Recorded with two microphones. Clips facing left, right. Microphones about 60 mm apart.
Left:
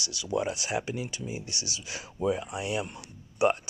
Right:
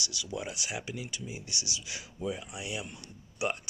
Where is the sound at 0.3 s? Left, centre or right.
Left.